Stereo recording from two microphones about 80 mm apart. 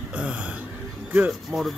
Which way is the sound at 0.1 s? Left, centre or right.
Centre.